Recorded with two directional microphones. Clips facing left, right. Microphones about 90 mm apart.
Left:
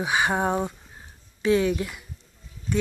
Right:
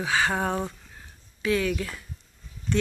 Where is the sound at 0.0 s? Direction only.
20° left (ahead or behind).